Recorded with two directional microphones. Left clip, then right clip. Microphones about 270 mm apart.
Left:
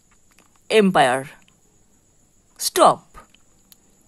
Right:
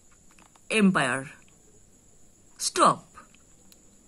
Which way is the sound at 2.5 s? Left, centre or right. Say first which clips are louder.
Left 7 dB; left.